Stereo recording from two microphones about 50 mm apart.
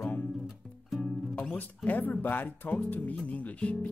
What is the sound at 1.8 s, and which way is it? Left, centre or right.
Speech, left.